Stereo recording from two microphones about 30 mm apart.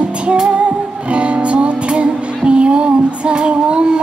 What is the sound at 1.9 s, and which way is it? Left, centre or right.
Female singing, right.